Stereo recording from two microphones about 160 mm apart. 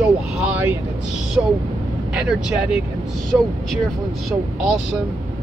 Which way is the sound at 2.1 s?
5° right (ahead or behind).